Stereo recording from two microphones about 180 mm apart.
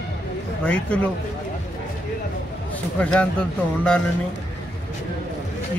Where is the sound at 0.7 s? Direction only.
5° left (ahead or behind).